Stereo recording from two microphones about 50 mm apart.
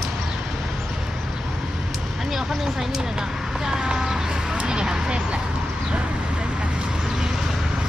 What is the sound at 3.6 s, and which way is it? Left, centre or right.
Speech, centre.